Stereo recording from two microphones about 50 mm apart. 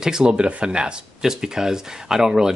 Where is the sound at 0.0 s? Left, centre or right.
Centre.